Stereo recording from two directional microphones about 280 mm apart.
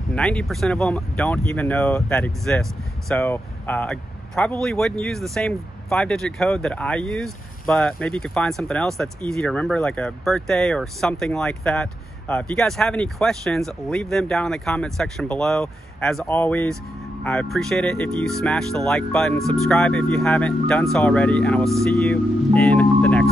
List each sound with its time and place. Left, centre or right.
0.1 s speech: centre